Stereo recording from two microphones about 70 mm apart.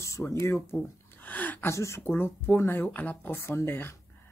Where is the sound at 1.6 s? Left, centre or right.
Left.